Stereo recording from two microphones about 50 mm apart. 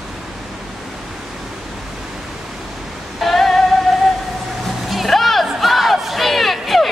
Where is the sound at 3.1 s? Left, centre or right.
Centre.